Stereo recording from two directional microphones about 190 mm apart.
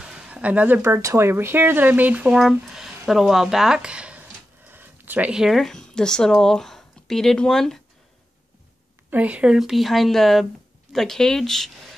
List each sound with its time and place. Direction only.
0.0 s speech: 5° right (ahead or behind)
9.1 s speech: 5° right (ahead or behind)